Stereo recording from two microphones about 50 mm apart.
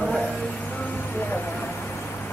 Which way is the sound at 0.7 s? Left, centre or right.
Left.